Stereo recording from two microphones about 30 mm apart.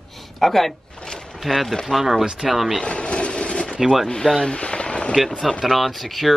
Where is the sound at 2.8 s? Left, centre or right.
Left.